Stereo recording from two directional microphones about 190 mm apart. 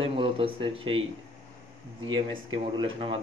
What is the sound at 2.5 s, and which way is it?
Speech, 25° right (ahead or behind).